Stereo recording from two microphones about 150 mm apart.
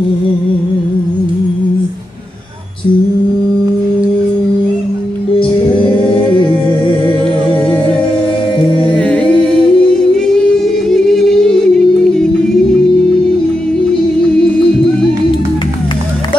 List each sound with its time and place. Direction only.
6.0 s music: 35° left (ahead or behind)
8.9 s singing: 5° left (ahead or behind)